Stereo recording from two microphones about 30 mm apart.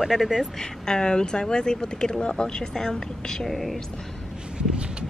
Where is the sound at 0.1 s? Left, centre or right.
Right.